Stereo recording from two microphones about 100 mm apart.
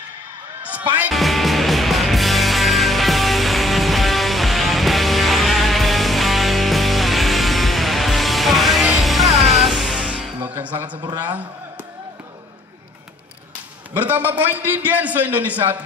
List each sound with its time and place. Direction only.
0.7 s music: 15° right (ahead or behind)
1.1 s music: centre (ahead or behind)
10.4 s a man's voice: 20° right (ahead or behind)
13.9 s a man's voice: 20° right (ahead or behind)